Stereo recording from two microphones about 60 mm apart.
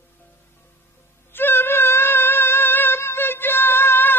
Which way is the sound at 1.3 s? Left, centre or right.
Left.